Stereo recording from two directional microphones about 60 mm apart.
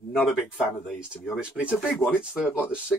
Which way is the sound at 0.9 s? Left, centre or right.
Centre.